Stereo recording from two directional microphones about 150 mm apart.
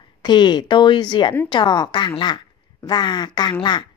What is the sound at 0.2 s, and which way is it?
A woman's voice, 30° left (ahead or behind).